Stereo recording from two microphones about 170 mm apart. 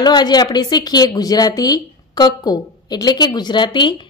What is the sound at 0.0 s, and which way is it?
A woman's voice, 25° left (ahead or behind).